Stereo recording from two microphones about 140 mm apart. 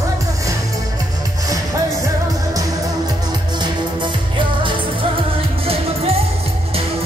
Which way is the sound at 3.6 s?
35° right (ahead or behind).